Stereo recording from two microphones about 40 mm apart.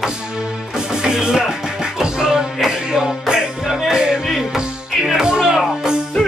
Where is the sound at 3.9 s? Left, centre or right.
Centre.